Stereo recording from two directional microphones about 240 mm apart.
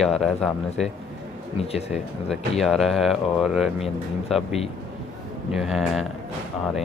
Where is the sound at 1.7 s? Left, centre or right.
Left.